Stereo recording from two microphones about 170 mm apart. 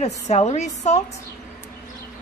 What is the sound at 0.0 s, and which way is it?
A woman's voice, 40° left (ahead or behind).